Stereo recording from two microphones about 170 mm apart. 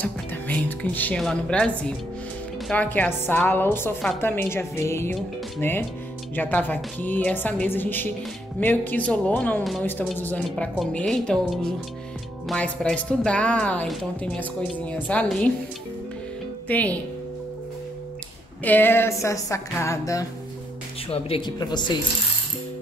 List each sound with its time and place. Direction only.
0.0 s a woman's voice: 10° left (ahead or behind)
16.6 s speech: 10° left (ahead or behind)
18.6 s a woman's voice: 10° left (ahead or behind)
21.1 s speech: 30° left (ahead or behind)